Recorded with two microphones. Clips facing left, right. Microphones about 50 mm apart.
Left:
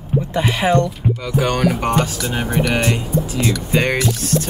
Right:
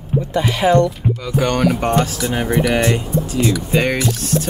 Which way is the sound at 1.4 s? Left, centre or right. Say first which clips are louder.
Right 1 dB; centre.